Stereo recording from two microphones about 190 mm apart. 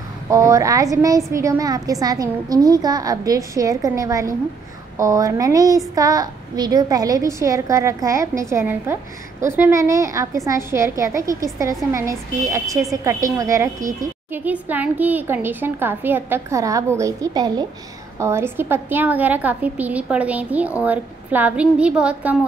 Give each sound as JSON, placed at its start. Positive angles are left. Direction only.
{"t": 0.3, "sound": "a woman's voice", "side_deg": -15}